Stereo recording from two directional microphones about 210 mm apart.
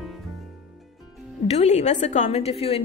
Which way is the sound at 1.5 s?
30° left (ahead or behind).